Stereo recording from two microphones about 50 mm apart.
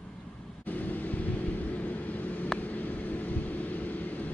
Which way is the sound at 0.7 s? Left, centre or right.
Left.